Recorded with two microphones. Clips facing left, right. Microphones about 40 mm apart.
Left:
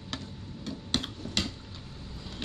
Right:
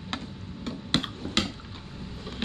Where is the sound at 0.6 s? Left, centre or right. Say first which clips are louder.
Right 4 dB; right.